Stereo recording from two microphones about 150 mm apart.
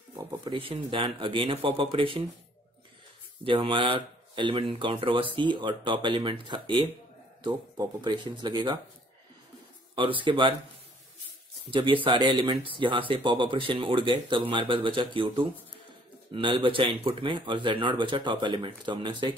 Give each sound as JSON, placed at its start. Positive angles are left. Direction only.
{"t": 0.3, "sound": "speech", "side_deg": -35}
{"t": 3.4, "sound": "speech", "side_deg": -35}
{"t": 9.9, "sound": "speech", "side_deg": -35}
{"t": 11.7, "sound": "speech", "side_deg": -35}